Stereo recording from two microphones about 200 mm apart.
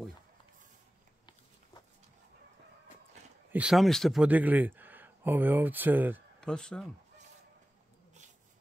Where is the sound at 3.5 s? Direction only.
5° right (ahead or behind).